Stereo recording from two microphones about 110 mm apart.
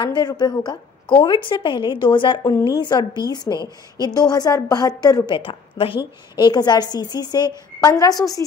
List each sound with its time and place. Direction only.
0.0 s a woman's voice: 40° left (ahead or behind)
5.3 s a woman's voice: 50° left (ahead or behind)
6.3 s a woman's voice: 40° left (ahead or behind)